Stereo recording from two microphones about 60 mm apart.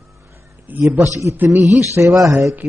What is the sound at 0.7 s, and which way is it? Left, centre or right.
A man's voice, right.